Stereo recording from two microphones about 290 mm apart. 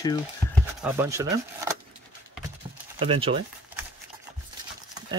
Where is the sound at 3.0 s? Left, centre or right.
Centre.